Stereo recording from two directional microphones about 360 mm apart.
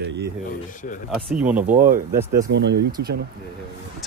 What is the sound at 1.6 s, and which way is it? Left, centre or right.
Speech, right.